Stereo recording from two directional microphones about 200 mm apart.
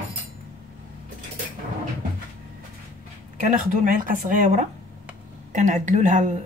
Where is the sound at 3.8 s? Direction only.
45° right (ahead or behind).